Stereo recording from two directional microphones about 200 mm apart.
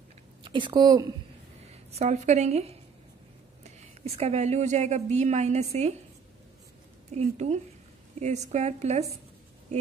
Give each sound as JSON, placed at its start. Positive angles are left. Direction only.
{"t": 0.4, "sound": "speech", "side_deg": -25}
{"t": 1.9, "sound": "speech", "side_deg": -35}
{"t": 7.2, "sound": "speech", "side_deg": -35}